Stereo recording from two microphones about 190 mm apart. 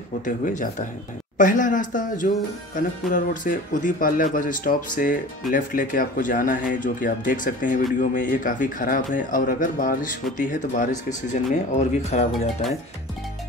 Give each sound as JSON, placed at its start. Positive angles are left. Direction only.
{"t": 0.2, "sound": "speech", "side_deg": 45}